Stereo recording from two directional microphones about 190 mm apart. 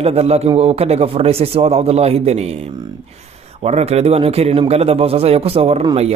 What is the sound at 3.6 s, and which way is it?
Speech, 35° right (ahead or behind).